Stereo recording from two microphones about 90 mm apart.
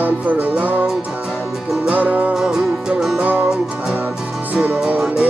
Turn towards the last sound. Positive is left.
turn(degrees=-15)  # may be behind; listen again after turning